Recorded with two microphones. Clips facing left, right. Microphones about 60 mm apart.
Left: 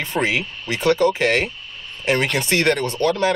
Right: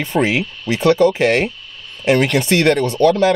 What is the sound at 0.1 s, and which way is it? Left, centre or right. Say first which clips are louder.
Speech: right 5 dB; centre.